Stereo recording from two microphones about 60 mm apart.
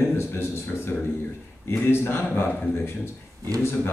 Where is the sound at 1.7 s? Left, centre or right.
Left.